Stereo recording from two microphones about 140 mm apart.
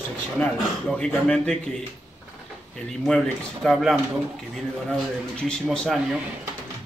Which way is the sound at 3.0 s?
Centre (ahead or behind).